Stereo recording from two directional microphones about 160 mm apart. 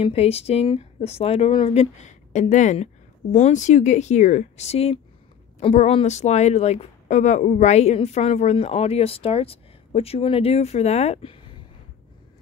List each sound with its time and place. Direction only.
0.0 s a woman's voice: 40° left (ahead or behind)